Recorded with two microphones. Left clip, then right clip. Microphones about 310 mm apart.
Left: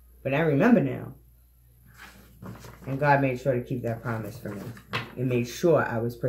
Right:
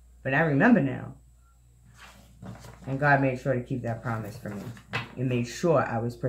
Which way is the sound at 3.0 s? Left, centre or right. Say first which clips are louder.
Left 1 dB; centre.